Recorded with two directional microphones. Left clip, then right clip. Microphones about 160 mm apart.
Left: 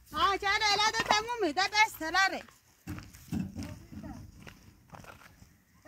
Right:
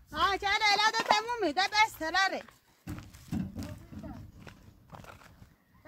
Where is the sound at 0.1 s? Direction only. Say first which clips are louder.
Even; 15° right (ahead or behind).